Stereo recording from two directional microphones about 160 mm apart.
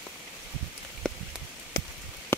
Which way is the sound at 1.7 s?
75° left (ahead or behind).